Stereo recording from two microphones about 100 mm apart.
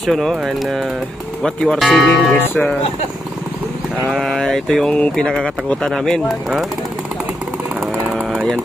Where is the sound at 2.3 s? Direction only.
20° left (ahead or behind).